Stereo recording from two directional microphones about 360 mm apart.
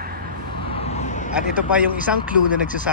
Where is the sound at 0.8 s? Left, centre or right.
Centre.